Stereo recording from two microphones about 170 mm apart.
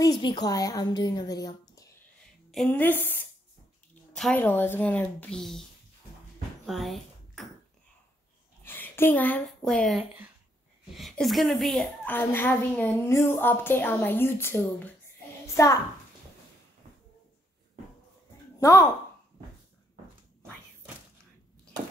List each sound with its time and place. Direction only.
0.0 s speech: 25° left (ahead or behind)
2.5 s a woman's voice: 10° left (ahead or behind)
6.6 s a sound: centre (ahead or behind)
8.6 s a woman's voice: 10° left (ahead or behind)
18.6 s speech: 20° left (ahead or behind)